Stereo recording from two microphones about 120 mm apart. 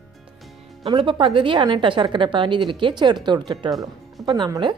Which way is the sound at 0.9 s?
45° right (ahead or behind).